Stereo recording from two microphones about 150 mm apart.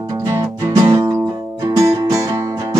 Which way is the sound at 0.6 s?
25° right (ahead or behind).